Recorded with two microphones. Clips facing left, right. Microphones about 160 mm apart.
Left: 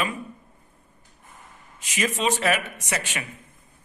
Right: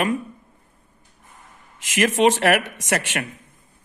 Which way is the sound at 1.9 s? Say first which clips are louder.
Right 7 dB; 90° right.